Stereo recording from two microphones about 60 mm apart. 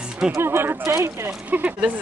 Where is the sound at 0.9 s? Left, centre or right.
Right.